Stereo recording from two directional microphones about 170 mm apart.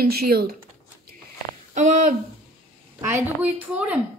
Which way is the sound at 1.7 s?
45° right (ahead or behind).